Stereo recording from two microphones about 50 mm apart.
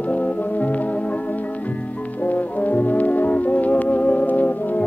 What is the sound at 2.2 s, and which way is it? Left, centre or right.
Brass instrument, left.